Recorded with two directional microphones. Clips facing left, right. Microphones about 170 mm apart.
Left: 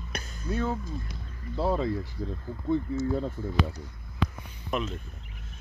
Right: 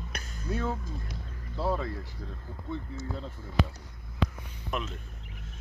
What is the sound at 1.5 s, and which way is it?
Speech, 20° left (ahead or behind).